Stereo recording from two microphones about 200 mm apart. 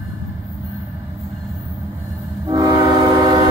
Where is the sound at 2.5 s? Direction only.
20° right (ahead or behind).